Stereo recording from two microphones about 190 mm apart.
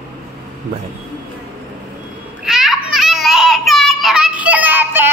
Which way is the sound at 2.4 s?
Centre (ahead or behind).